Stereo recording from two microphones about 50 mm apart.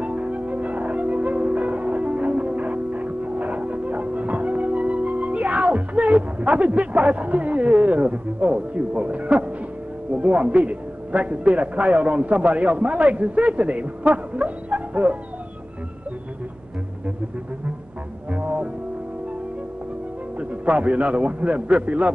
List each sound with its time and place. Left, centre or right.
0.0 s music: right
10.1 s a man's voice: right
18.3 s music: right
20.3 s a man's voice: right